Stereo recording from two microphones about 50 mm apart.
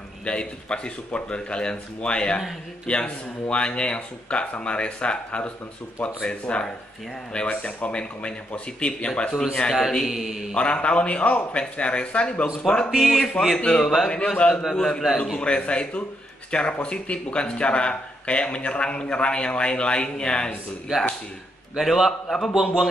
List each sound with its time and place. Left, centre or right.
0.2 s speech: left
9.8 s a man's voice: centre
10.5 s a man's voice: left
12.9 s a man's voice: centre
13.6 s a man's voice: left
15.3 s speech: left
20.9 s a man's voice: centre